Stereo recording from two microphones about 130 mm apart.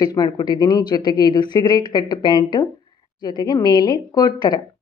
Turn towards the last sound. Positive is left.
turn(degrees=35)  # may be behind; listen again after turning